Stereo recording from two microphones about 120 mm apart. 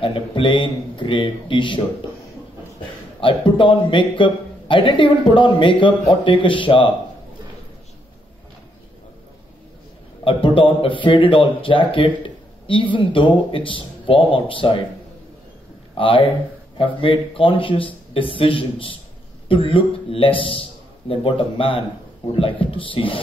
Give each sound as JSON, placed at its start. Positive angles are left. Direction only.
{"t": 0.0, "sound": "a man's voice", "side_deg": 45}
{"t": 3.2, "sound": "a man's voice", "side_deg": 45}
{"t": 10.2, "sound": "a man's voice", "side_deg": 45}
{"t": 16.0, "sound": "a man's voice", "side_deg": 50}